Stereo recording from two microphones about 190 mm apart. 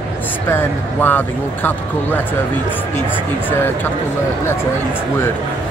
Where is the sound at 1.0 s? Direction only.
10° left (ahead or behind).